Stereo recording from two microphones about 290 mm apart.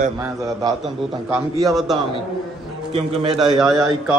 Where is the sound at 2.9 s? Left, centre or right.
Centre.